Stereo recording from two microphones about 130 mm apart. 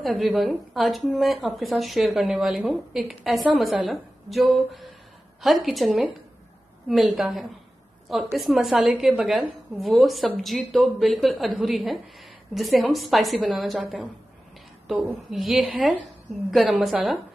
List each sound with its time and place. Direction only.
0.0 s a woman's voice: centre (ahead or behind)
15.3 s a woman's voice: centre (ahead or behind)